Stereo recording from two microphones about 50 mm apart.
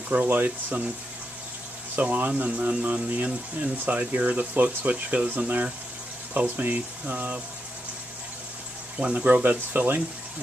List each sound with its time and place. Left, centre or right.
0.1 s speech: right
2.0 s speech: right
8.9 s speech: right
9.4 s speech: right